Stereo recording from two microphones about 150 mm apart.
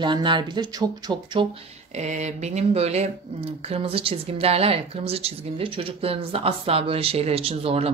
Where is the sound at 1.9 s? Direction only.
50° right (ahead or behind).